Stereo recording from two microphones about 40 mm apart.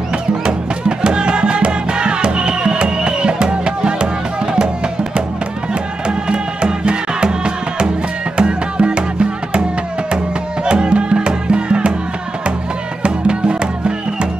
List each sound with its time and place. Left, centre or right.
0.5 s music: centre
6.0 s music: right
13.0 s music: right